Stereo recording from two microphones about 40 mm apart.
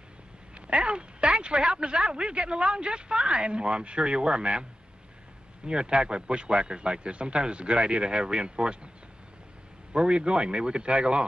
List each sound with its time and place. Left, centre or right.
0.6 s speech: right
5.7 s a man's voice: right
9.9 s a man's voice: right